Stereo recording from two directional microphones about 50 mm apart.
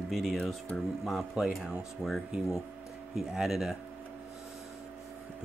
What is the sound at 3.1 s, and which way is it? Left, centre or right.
Speech, centre.